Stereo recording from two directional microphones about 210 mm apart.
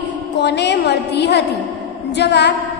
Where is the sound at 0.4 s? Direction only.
55° left (ahead or behind).